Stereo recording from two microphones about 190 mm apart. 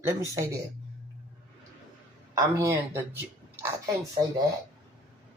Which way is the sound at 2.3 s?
15° right (ahead or behind).